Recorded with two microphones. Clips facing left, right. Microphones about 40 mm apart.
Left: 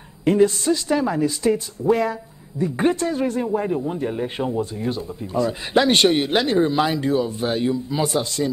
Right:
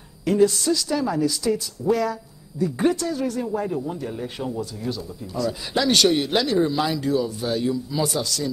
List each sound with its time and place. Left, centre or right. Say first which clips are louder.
0.2 s a man's voice: left 2 dB; left